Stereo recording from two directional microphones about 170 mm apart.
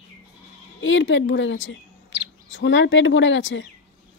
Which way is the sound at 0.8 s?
90° left.